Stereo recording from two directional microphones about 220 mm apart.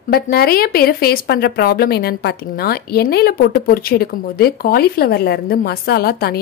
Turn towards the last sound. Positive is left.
turn(degrees=45)  # may be behind; listen again after turning